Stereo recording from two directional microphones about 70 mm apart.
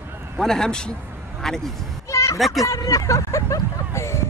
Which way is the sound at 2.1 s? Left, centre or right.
Left.